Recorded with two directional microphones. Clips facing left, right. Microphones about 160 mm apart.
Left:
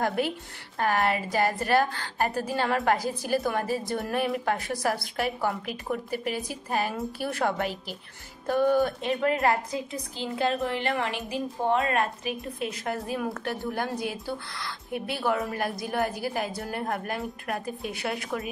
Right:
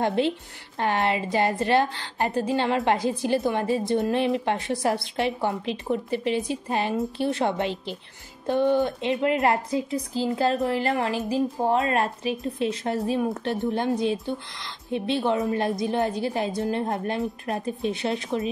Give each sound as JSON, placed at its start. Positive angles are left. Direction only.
{"t": 0.0, "sound": "a woman's voice", "side_deg": -25}